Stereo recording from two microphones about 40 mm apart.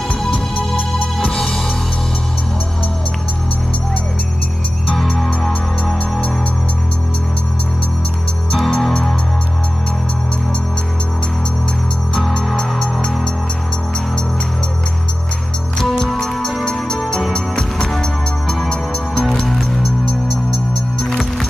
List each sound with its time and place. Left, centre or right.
0.1 s music: centre
5.1 s music: centre
8.5 s music: centre
12.1 s music: centre
16.0 s music: centre
19.4 s music: centre
19.8 s music: centre